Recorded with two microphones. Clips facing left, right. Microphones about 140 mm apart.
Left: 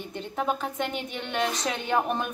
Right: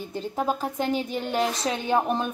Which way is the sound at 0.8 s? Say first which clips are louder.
Right 5 dB; 35° right (ahead or behind).